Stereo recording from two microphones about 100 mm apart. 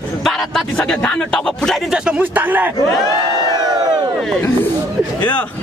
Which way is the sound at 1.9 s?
10° right (ahead or behind).